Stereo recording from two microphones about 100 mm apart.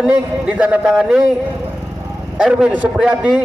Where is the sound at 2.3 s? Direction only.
10° right (ahead or behind).